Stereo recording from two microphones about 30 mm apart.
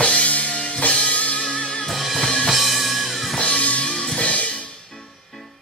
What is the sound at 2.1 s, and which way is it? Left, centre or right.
Drum kit, centre.